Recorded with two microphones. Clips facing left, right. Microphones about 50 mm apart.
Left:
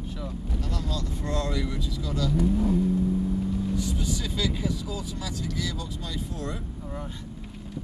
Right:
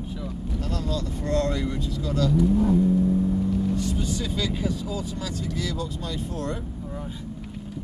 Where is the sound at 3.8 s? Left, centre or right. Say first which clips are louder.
Right 3 dB; right.